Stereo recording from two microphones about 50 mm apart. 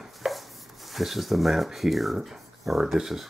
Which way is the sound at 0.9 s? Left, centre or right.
Centre.